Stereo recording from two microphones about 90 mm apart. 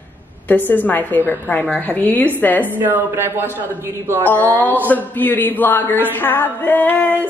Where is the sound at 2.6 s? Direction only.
20° right (ahead or behind).